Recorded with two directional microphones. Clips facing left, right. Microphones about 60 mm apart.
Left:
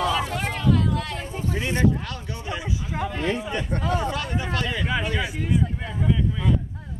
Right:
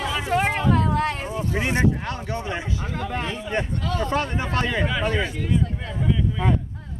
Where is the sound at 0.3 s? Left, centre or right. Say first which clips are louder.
Right 3 dB; right.